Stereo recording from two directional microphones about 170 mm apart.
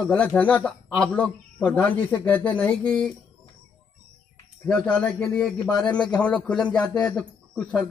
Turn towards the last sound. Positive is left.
turn(degrees=5)  # may be behind; listen again after turning